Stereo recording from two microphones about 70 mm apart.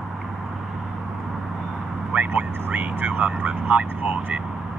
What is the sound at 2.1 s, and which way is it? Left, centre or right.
Speech, right.